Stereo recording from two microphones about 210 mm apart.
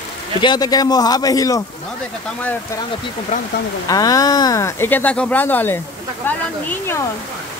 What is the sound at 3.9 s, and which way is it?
Speech, 15° left (ahead or behind).